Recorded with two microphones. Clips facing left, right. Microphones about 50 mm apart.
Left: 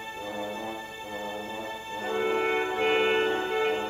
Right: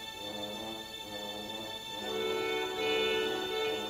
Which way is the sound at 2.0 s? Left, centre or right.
Left.